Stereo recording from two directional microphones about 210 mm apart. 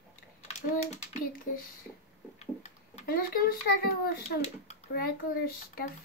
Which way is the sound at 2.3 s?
40° left (ahead or behind).